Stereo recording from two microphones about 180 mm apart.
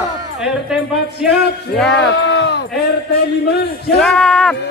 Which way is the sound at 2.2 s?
70° left (ahead or behind).